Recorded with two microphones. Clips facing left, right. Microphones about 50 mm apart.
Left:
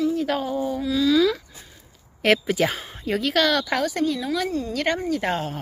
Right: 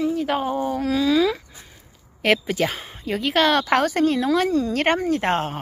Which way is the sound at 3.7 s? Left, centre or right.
Right.